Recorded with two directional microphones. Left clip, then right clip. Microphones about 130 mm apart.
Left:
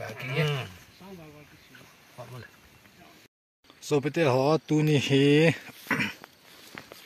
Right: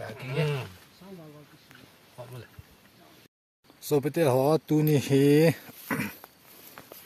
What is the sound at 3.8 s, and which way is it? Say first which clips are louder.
Speech: even; 10° right (ahead or behind).